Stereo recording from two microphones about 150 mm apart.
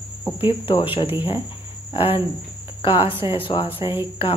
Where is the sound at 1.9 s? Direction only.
35° left (ahead or behind).